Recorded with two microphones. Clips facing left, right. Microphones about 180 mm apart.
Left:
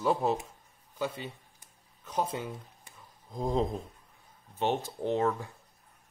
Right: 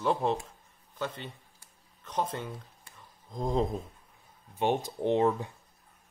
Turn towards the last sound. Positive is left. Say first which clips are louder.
# right 3 dB
turn(degrees=-20)  # may be behind; listen again after turning